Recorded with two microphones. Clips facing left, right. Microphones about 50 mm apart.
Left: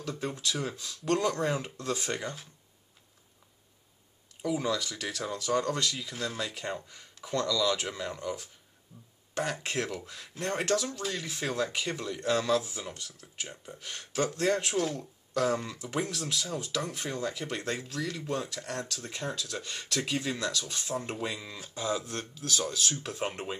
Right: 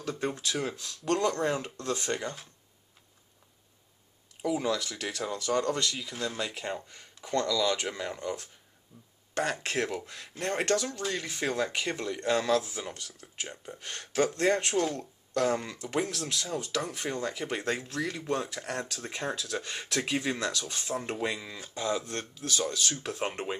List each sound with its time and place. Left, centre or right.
0.0 s speech: centre
4.4 s speech: centre
7.9 s speech: centre
8.2 s speech: centre
18.9 s speech: right; by 23.4 s centre